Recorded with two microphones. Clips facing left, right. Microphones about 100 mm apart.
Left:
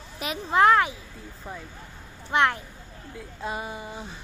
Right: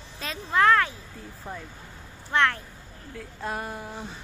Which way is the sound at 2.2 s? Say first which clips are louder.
Left 1 dB; 15° left (ahead or behind).